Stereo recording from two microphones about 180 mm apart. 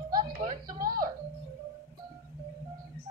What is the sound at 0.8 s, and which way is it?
Music, 55° right (ahead or behind).